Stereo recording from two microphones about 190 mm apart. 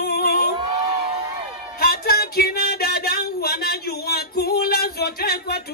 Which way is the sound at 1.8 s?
55° left (ahead or behind).